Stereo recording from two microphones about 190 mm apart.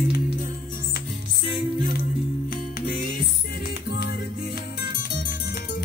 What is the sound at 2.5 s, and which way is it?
Music, 50° left (ahead or behind).